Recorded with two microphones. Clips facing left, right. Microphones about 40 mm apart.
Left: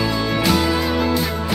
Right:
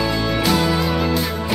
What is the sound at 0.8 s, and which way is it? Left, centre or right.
Music, centre.